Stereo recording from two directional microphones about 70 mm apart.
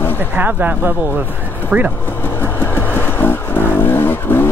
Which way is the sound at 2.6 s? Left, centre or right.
Left.